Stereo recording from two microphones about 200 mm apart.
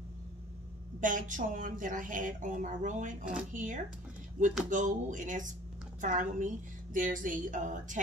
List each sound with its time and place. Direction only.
1.0 s a woman's voice: 40° right (ahead or behind)